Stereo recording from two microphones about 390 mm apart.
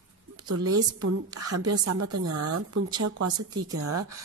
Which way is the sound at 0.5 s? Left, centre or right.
Right.